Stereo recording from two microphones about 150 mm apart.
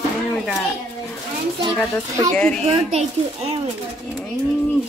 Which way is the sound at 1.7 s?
15° left (ahead or behind).